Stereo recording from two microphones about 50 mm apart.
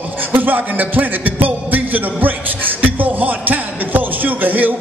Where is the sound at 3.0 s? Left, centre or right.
Right.